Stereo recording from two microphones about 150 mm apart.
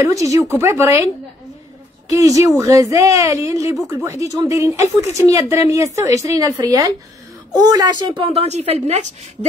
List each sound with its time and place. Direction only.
0.0 s speech: 20° right (ahead or behind)
2.1 s speech: 20° right (ahead or behind)
8.2 s a woman's voice: 40° right (ahead or behind)